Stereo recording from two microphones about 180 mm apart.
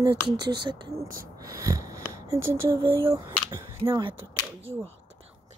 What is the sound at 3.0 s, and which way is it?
Speech, 15° right (ahead or behind).